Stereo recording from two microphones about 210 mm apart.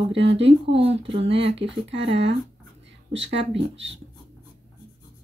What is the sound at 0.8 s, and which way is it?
Speech, 30° right (ahead or behind).